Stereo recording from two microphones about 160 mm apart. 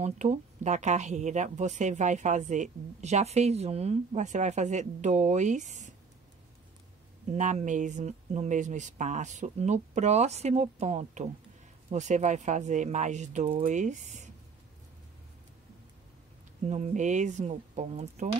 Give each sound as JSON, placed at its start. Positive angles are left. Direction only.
{"t": 0.0, "sound": "speech", "side_deg": -45}
{"t": 7.2, "sound": "speech", "side_deg": -45}
{"t": 16.6, "sound": "speech", "side_deg": -45}